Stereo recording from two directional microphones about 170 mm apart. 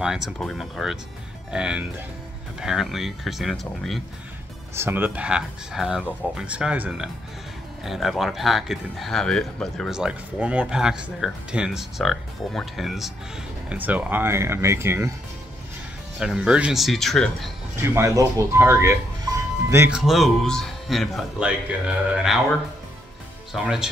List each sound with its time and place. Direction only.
0.0 s speech: centre (ahead or behind)
4.7 s speech: 10° right (ahead or behind)
16.2 s speech: 5° right (ahead or behind)
17.7 s speech: 15° right (ahead or behind)
19.9 s speech: centre (ahead or behind)
23.5 s speech: 5° right (ahead or behind)